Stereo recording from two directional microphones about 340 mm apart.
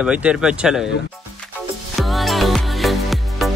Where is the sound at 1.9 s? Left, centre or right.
Centre.